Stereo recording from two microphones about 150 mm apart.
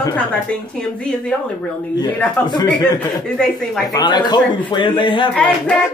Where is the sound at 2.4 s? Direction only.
30° left (ahead or behind).